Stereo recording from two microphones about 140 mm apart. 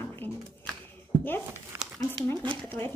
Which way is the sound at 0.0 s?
15° left (ahead or behind).